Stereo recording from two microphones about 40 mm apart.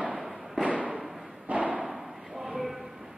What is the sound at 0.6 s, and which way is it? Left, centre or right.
Fireworks, right.